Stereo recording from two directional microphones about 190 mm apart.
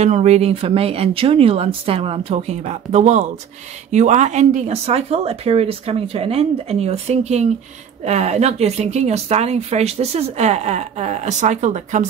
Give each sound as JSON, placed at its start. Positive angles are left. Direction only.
{"t": 0.0, "sound": "speech", "side_deg": -35}